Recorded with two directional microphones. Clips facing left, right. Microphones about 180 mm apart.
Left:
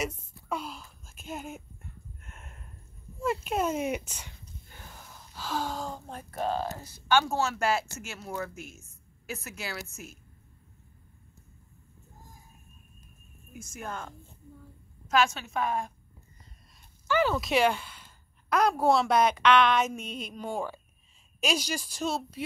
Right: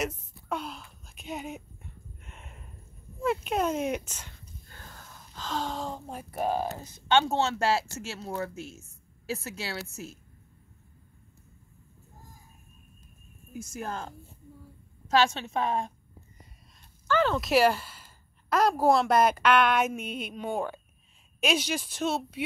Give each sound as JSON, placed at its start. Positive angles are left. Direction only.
{"t": 0.0, "sound": "a sound", "side_deg": 0}
{"t": 3.2, "sound": "speech", "side_deg": 0}
{"t": 13.7, "sound": "a woman's voice", "side_deg": -35}
{"t": 17.1, "sound": "speech", "side_deg": 5}